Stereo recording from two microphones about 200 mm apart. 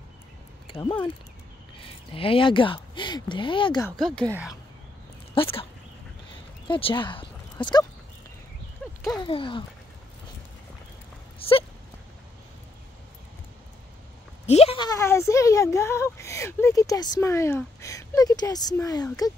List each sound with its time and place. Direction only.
0.7 s speech: 25° left (ahead or behind)
4.0 s speech: 5° left (ahead or behind)
5.3 s speech: 25° left (ahead or behind)
6.7 s speech: 25° left (ahead or behind)
8.8 s a sound: 5° left (ahead or behind)
9.2 s speech: 25° left (ahead or behind)
11.3 s dog: 30° left (ahead or behind)
14.4 s a woman's voice: 30° left (ahead or behind)